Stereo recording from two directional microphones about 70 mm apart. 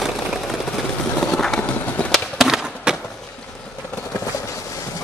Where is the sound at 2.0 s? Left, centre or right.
Centre.